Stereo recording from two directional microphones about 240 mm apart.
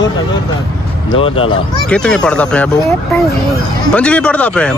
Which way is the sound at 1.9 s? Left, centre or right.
Centre.